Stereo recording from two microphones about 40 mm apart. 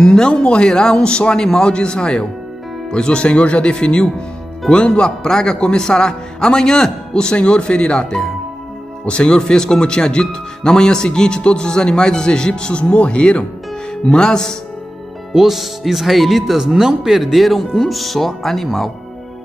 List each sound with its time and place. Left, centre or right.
0.0 s speech: centre
7.3 s speech: left
15.3 s speech: centre